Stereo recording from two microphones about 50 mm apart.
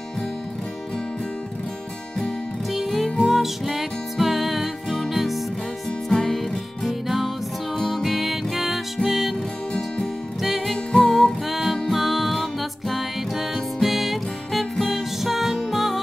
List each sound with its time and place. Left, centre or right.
2.2 s music: centre
5.9 s music: centre
10.4 s music: centre
10.9 s music: centre
11.4 s music: centre